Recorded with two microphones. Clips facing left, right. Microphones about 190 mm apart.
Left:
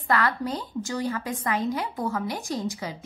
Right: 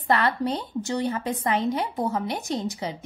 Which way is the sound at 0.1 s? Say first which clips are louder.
Right 2 dB; 25° right (ahead or behind).